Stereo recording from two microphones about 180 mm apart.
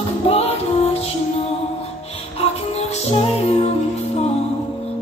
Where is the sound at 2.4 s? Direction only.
35° left (ahead or behind).